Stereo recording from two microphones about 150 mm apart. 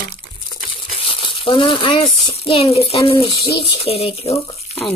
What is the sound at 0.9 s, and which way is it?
Speech, 40° left (ahead or behind).